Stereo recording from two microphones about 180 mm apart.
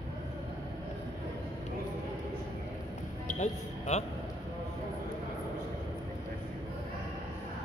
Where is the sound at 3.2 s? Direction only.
40° left (ahead or behind).